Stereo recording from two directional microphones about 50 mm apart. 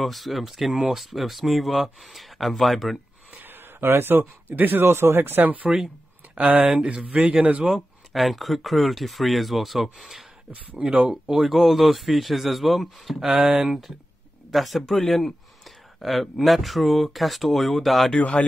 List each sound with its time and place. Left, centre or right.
0.0 s speech: centre
3.3 s a man's voice: right
4.8 s speech: right
6.3 s speech: right
7.6 s speech: centre
10.9 s speech: right
11.2 s speech: centre